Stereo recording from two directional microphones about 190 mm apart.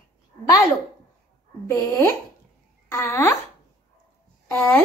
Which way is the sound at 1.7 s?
15° left (ahead or behind).